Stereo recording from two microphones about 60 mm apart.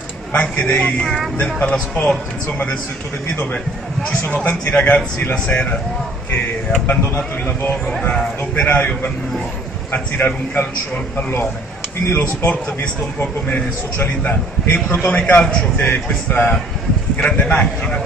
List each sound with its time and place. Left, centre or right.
0.3 s speech: left
4.0 s speech: left
7.2 s a man's voice: left